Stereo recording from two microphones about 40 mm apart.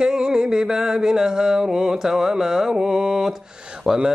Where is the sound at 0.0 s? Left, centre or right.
Centre.